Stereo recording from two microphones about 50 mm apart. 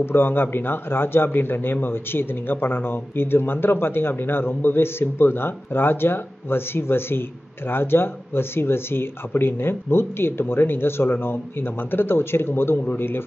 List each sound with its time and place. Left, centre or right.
0.0 s a man's voice: left